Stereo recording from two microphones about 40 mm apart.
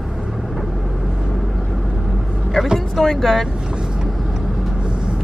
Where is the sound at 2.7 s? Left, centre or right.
Centre.